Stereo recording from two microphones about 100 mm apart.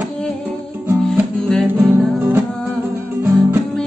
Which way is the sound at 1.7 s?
20° right (ahead or behind).